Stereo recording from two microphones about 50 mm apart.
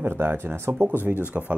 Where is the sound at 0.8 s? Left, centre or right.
Right.